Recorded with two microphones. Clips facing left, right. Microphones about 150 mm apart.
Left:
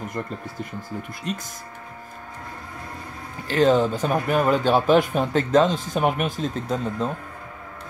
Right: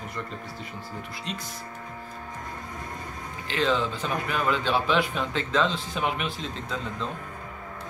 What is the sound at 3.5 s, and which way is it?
Speech, 45° left (ahead or behind).